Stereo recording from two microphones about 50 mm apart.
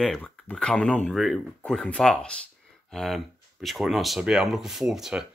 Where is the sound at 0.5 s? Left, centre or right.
Centre.